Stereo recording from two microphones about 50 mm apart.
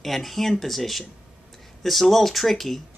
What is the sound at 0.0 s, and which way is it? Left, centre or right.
Speech, centre.